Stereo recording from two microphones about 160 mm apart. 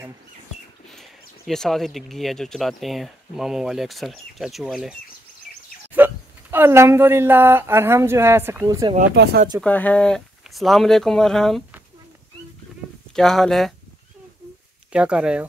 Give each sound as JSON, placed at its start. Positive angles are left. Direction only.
{"t": 1.5, "sound": "speech", "side_deg": 0}
{"t": 5.9, "sound": "speech", "side_deg": -15}
{"t": 9.1, "sound": "speech", "side_deg": -90}
{"t": 9.6, "sound": "speech", "side_deg": 10}
{"t": 13.1, "sound": "speech", "side_deg": 0}
{"t": 14.9, "sound": "speech", "side_deg": -5}